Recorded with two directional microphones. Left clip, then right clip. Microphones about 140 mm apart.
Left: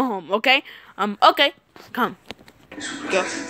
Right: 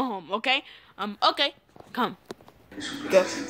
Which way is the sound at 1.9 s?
20° left (ahead or behind).